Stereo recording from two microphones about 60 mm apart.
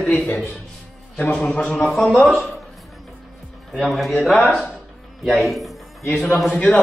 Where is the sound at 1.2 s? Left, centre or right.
Left.